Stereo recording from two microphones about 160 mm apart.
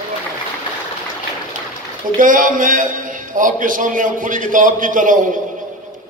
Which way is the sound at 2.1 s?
55° right (ahead or behind).